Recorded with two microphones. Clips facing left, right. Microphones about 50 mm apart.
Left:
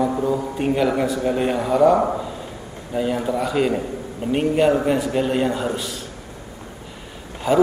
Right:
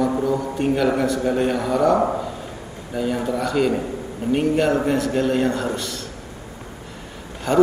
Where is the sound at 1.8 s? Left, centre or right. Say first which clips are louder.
Left 3 dB; centre.